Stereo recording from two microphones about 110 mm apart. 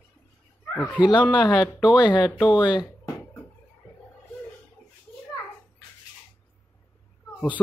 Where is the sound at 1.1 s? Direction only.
40° left (ahead or behind).